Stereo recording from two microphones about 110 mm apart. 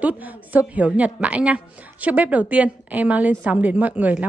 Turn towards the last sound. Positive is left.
turn(degrees=-15)  # may be behind; listen again after turning